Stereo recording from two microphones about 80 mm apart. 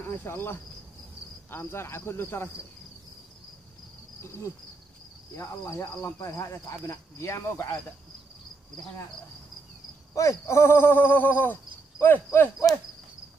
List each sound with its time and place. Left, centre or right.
0.0 s cricket: left
1.5 s speech: left
5.4 s speech: left
6.1 s speech: left
10.1 s speech: left